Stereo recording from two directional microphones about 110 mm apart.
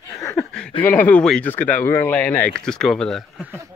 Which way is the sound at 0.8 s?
15° left (ahead or behind).